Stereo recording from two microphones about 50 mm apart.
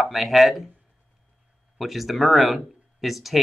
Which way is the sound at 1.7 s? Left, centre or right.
Centre.